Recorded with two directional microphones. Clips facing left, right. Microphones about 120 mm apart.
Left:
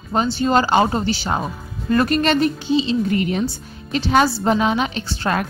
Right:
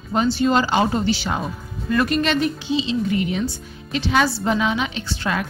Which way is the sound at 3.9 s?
40° left (ahead or behind).